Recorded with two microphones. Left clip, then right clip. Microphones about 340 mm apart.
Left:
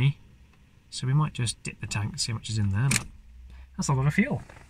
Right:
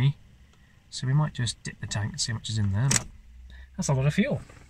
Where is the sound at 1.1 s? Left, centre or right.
Centre.